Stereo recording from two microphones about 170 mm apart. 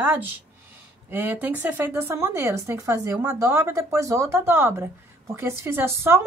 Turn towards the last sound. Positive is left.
turn(degrees=-15)  # may be behind; listen again after turning